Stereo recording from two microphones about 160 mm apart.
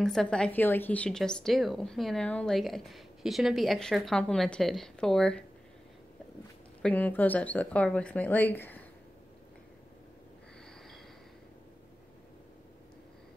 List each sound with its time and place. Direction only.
0.0 s a woman's voice: 5° left (ahead or behind)
6.8 s speech: 10° left (ahead or behind)